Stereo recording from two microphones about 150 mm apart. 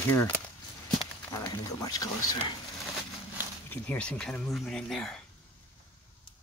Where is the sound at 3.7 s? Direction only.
10° left (ahead or behind).